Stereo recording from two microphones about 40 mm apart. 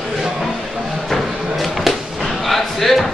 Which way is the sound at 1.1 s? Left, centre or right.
Centre.